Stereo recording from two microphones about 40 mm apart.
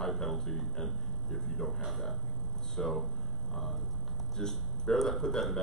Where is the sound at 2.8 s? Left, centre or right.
Centre.